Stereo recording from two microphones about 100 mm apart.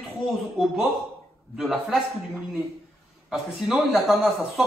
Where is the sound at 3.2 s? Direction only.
5° right (ahead or behind).